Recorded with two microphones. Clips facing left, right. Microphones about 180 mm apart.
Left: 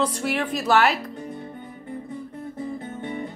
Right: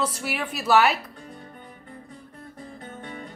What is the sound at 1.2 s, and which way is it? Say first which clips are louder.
Music: left 8 dB; 20° left (ahead or behind).